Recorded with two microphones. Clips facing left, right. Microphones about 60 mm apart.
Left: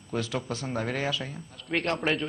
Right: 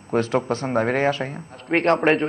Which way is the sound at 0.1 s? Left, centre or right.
Right.